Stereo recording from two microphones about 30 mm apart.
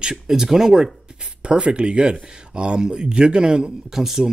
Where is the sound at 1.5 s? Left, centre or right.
Right.